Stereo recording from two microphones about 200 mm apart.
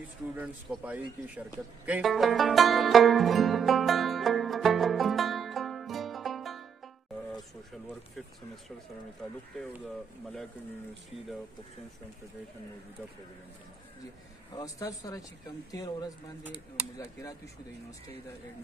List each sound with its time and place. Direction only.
0.4 s a man's voice: 5° right (ahead or behind)
1.9 s music: centre (ahead or behind)
14.5 s speech: 15° left (ahead or behind)